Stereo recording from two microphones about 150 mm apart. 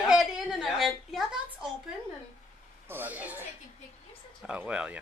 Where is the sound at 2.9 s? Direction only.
10° right (ahead or behind).